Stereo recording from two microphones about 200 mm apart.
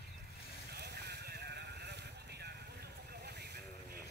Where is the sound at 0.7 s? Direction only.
55° right (ahead or behind).